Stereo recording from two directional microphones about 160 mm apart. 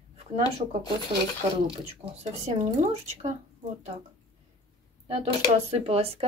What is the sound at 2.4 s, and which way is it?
Speech, 40° right (ahead or behind).